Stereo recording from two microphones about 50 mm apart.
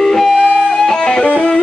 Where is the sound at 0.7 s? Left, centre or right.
Centre.